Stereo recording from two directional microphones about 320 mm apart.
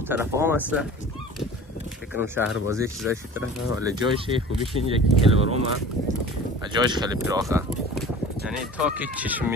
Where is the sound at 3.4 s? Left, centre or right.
Left.